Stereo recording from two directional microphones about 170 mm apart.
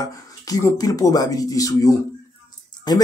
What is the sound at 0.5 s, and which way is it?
A man's voice, 20° left (ahead or behind).